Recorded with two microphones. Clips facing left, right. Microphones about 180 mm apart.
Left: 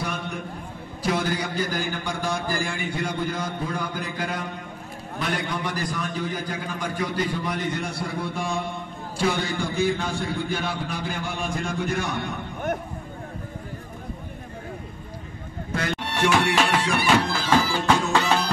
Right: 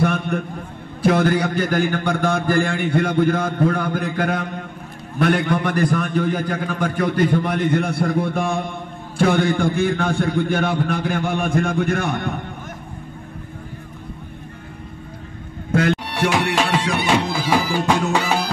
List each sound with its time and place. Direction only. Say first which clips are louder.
0.0 s a sound: right 10 dB; 55° right (ahead or behind)
1.0 s a man's voice: right 8 dB; 55° right (ahead or behind)
16.0 s speech: right 2 dB; 10° right (ahead or behind)
18.1 s music: right 2 dB; 10° right (ahead or behind)